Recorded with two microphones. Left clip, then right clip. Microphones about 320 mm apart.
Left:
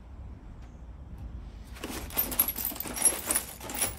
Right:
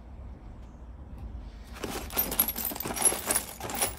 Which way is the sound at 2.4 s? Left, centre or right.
Centre.